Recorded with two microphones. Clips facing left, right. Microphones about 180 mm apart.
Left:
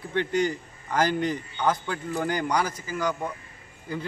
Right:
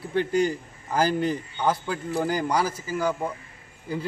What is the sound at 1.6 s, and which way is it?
A man's voice, 10° right (ahead or behind).